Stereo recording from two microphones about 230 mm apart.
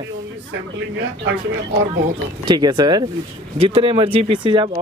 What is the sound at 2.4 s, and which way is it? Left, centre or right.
Speech, centre.